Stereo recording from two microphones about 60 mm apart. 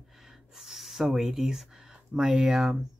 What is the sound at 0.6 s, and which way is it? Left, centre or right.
Speech, centre.